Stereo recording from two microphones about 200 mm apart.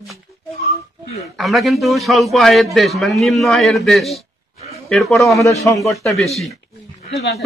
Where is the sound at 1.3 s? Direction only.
Centre (ahead or behind).